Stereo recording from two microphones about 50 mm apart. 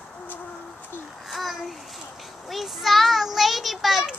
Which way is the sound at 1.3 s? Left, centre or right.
Centre.